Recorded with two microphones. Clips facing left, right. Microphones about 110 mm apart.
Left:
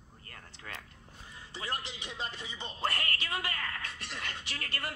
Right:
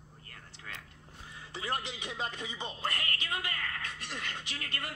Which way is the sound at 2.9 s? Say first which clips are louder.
Left 1 dB; 45° left (ahead or behind).